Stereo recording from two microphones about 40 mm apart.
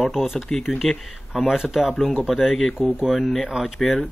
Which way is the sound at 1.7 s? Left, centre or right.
Centre.